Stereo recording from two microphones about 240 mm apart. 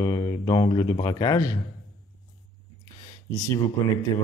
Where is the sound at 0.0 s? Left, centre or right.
Centre.